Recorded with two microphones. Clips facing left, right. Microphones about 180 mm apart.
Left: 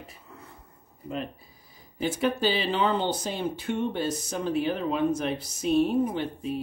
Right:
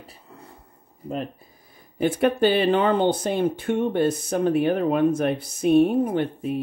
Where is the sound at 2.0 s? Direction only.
60° right (ahead or behind).